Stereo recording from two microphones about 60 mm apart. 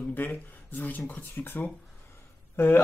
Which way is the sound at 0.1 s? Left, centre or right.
Left.